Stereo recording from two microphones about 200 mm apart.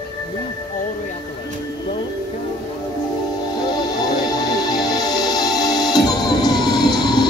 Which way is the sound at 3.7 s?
20° left (ahead or behind).